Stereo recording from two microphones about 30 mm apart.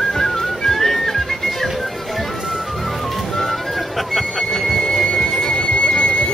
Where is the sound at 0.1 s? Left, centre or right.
Centre.